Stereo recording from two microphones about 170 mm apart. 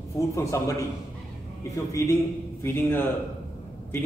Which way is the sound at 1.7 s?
20° left (ahead or behind).